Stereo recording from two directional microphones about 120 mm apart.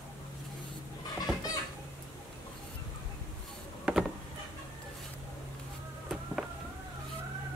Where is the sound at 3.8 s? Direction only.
5° right (ahead or behind).